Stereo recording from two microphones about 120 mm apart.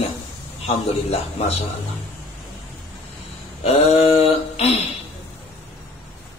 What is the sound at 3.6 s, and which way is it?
A man's voice, 60° left (ahead or behind).